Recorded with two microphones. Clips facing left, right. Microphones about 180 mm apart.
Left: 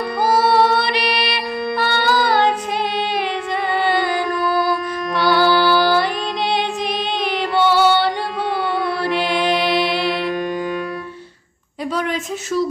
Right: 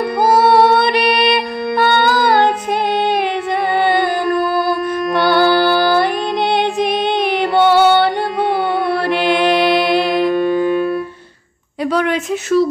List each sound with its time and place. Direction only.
0.2 s music: 50° right (ahead or behind)
10.3 s music: 25° right (ahead or behind)
11.9 s a sound: 70° right (ahead or behind)